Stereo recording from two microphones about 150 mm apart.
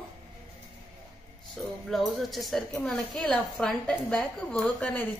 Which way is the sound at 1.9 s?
Centre (ahead or behind).